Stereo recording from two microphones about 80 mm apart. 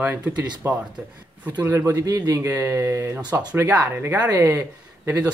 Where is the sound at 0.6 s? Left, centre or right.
Right.